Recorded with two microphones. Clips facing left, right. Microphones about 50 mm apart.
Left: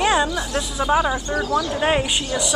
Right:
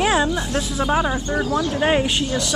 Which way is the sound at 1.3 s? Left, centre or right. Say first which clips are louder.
Even; right.